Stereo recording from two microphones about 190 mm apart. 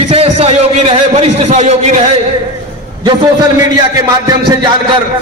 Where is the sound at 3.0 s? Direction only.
20° right (ahead or behind).